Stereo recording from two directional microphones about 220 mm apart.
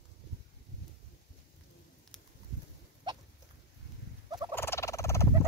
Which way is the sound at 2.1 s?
Centre (ahead or behind).